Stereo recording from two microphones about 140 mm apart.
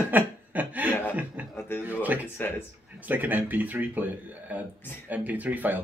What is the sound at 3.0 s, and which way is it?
Speech, 15° right (ahead or behind).